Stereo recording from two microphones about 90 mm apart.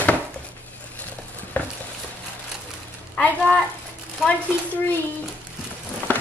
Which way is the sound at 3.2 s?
15° left (ahead or behind).